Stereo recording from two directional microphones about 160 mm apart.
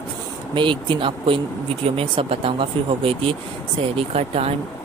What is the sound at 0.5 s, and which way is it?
Speech, 30° right (ahead or behind).